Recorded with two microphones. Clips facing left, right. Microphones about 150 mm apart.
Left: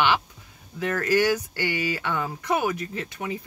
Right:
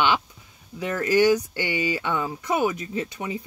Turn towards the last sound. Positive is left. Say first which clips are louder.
# right 2 dB
turn(degrees=-20)  # may be behind; listen again after turning